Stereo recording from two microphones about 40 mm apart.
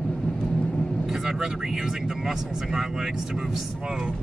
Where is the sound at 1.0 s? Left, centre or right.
Centre.